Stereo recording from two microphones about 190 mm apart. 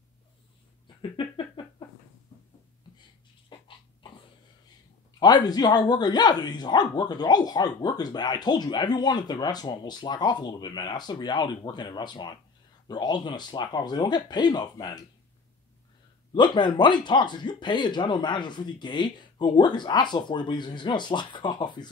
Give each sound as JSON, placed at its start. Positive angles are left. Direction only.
{"t": 0.8, "sound": "a sound", "side_deg": 25}
{"t": 3.4, "sound": "dog", "side_deg": 25}
{"t": 5.2, "sound": "speech", "side_deg": 20}
{"t": 16.3, "sound": "speech", "side_deg": 25}